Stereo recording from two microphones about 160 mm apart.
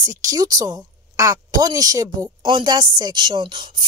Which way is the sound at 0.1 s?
20° right (ahead or behind).